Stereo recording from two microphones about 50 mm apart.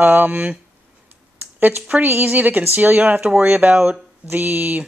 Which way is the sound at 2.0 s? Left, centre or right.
Right.